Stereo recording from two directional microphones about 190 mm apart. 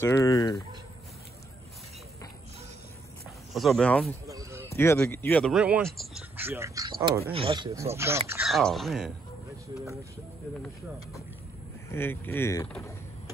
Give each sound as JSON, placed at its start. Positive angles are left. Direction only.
{"t": 0.0, "sound": "speech", "side_deg": 15}
{"t": 3.5, "sound": "speech", "side_deg": 0}
{"t": 4.3, "sound": "a sound", "side_deg": -15}
{"t": 4.6, "sound": "speech", "side_deg": 15}
{"t": 5.5, "sound": "speech", "side_deg": -5}
{"t": 6.3, "sound": "speech", "side_deg": -10}
{"t": 7.9, "sound": "speech", "side_deg": -15}
{"t": 8.5, "sound": "speech", "side_deg": 0}
{"t": 11.9, "sound": "speech", "side_deg": 10}